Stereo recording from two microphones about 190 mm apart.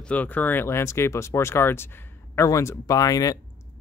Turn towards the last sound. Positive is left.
turn(degrees=20)  # may be behind; listen again after turning